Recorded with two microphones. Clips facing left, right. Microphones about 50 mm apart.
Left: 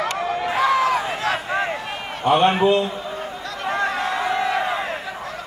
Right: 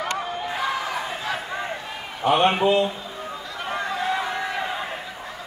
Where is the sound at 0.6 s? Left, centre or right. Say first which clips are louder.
Left 9 dB; left.